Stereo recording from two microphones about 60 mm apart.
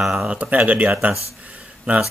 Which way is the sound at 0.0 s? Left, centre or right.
Centre.